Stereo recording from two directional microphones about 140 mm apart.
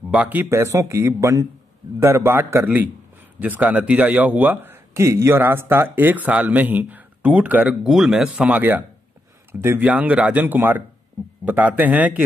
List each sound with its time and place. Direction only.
0.1 s speech: 10° right (ahead or behind)